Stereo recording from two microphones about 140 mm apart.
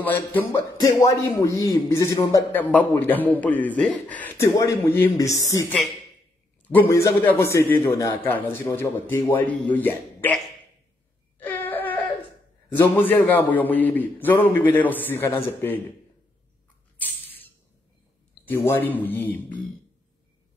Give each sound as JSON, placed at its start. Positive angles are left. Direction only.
{"t": 0.0, "sound": "a man's voice", "side_deg": 15}
{"t": 0.6, "sound": "a man's voice", "side_deg": 30}
{"t": 6.7, "sound": "a man's voice", "side_deg": 15}
{"t": 11.3, "sound": "wail", "side_deg": 15}
{"t": 12.7, "sound": "a man's voice", "side_deg": 15}
{"t": 17.0, "sound": "a sound", "side_deg": 15}
{"t": 18.4, "sound": "a man's voice", "side_deg": 15}